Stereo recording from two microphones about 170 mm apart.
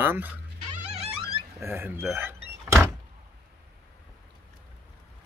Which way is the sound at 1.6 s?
15° right (ahead or behind).